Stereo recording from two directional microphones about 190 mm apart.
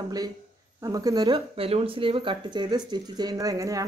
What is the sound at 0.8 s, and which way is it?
A woman's voice, 20° right (ahead or behind).